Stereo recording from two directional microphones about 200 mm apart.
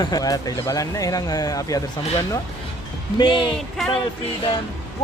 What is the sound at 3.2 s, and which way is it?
Speech, 25° left (ahead or behind).